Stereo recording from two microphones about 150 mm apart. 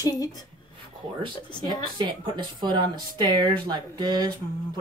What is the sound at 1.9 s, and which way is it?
Speech, 30° right (ahead or behind).